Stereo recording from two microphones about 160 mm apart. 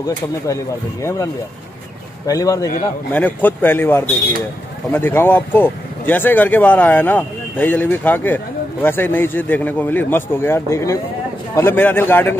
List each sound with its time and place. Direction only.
1.0 s a man's voice: 20° left (ahead or behind)
3.1 s speech: 10° left (ahead or behind)